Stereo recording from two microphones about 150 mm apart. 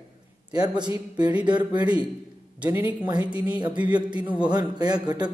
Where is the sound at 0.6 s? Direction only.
25° right (ahead or behind).